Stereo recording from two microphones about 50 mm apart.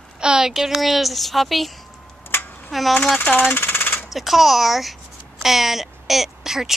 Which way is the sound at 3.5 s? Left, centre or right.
Left.